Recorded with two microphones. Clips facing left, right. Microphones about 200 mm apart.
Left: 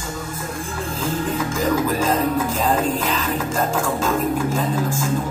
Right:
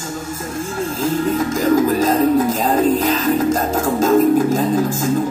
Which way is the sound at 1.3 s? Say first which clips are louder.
Right 5 dB; 40° right (ahead or behind).